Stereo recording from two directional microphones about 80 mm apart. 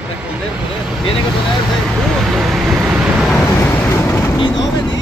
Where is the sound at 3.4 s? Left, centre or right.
Left.